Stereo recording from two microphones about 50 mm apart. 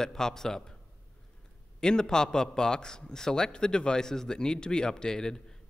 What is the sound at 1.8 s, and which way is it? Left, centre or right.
A man's voice, centre.